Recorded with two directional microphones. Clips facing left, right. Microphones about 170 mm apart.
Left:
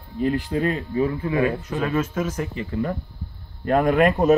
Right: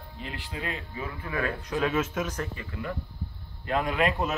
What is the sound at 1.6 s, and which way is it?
Speech, centre (ahead or behind).